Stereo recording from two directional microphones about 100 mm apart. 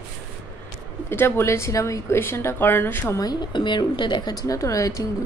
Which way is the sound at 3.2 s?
45° left (ahead or behind).